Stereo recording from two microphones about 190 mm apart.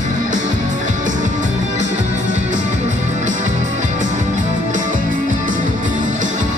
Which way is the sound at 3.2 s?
40° right (ahead or behind).